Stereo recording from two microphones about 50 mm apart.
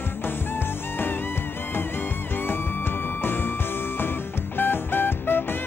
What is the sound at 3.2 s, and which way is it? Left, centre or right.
Music, left.